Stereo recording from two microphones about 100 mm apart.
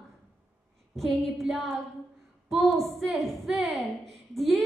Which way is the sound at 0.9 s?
Centre (ahead or behind).